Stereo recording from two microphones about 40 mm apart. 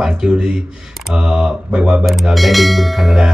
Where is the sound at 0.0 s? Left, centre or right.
Centre.